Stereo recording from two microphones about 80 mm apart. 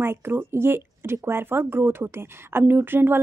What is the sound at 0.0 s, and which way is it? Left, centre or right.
Speech, right.